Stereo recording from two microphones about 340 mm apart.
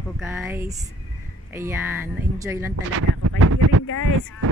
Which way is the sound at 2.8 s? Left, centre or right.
Right.